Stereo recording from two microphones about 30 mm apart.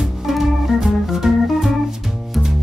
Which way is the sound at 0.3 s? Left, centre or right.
Centre.